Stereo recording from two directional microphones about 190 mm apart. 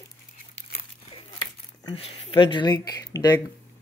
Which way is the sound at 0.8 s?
30° left (ahead or behind).